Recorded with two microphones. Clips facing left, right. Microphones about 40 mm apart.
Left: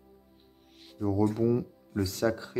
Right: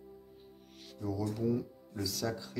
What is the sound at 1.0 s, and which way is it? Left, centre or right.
Speech, left.